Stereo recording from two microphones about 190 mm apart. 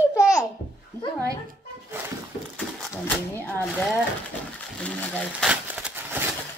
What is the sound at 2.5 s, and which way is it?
Speech, 10° left (ahead or behind).